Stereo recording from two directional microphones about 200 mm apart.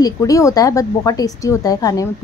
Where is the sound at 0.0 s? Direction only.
15° left (ahead or behind).